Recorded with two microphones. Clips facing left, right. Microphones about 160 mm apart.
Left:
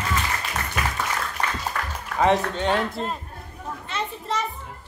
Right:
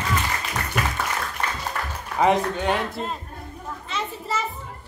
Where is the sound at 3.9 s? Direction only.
5° right (ahead or behind).